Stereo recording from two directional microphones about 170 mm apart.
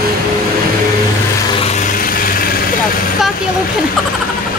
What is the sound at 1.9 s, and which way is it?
Vehicle, 55° left (ahead or behind).